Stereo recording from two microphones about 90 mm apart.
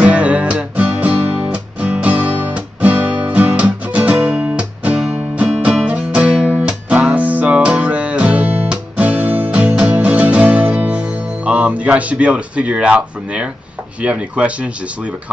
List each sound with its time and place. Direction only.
0.0 s music: 15° right (ahead or behind)
14.0 s speech: 15° right (ahead or behind)